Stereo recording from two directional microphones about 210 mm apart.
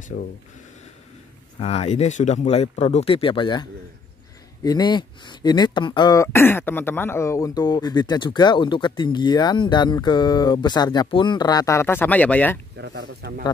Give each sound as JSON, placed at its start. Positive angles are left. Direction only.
{"t": 0.1, "sound": "speech", "side_deg": 40}
{"t": 1.6, "sound": "speech", "side_deg": 30}
{"t": 4.6, "sound": "speech", "side_deg": 20}
{"t": 12.7, "sound": "speech", "side_deg": -55}